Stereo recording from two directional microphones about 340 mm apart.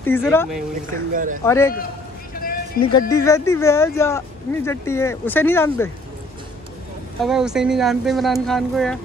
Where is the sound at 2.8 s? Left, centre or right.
Left.